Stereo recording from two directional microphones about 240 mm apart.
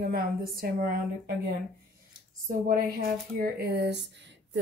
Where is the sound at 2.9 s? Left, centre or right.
Right.